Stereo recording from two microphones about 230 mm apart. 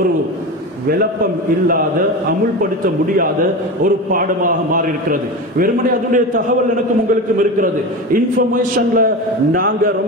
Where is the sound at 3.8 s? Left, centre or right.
Right.